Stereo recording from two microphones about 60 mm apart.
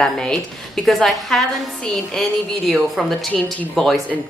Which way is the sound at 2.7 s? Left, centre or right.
Centre.